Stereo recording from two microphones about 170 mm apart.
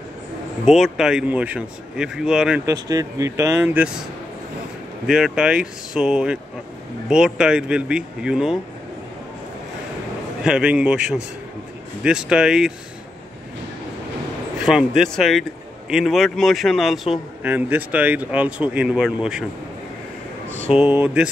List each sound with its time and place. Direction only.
0.7 s a man's voice: centre (ahead or behind)
2.6 s speech: 20° right (ahead or behind)
5.0 s a man's voice: 5° right (ahead or behind)
10.4 s a man's voice: 5° right (ahead or behind)
14.6 s a man's voice: 5° right (ahead or behind)
20.7 s speech: 10° right (ahead or behind)